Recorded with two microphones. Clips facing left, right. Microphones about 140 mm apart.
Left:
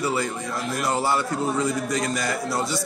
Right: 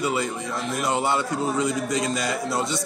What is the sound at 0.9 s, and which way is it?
A man's voice, 20° right (ahead or behind).